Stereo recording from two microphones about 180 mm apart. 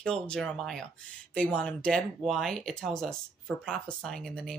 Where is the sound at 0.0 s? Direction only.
5° left (ahead or behind).